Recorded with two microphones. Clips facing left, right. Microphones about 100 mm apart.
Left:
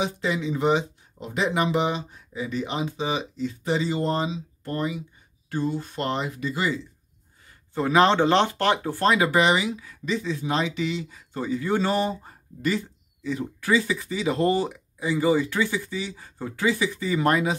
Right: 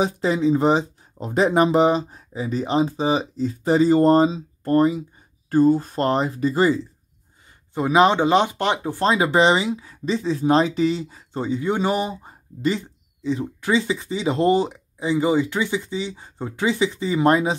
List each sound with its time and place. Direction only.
0.0 s speech: 35° right (ahead or behind)
7.7 s speech: 15° right (ahead or behind)